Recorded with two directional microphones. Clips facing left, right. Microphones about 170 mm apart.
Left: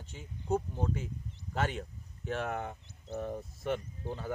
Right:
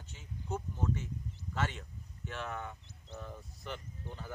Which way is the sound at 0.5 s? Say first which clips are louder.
Left 5 dB; 35° left (ahead or behind).